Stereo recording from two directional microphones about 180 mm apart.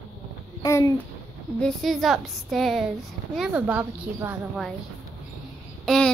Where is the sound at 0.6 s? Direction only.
15° left (ahead or behind).